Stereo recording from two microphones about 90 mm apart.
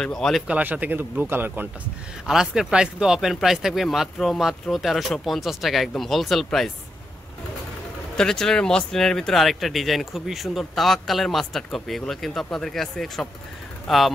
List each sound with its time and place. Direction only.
0.0 s speech: 5° left (ahead or behind)
0.5 s speech: 20° right (ahead or behind)
2.2 s speech: 5° right (ahead or behind)
8.2 s speech: 5° left (ahead or behind)